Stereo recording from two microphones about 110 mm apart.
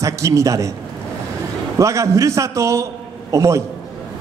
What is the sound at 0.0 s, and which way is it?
Speech, 30° right (ahead or behind).